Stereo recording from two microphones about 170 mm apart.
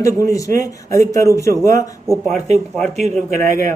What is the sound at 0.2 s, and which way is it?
Speech, 20° left (ahead or behind).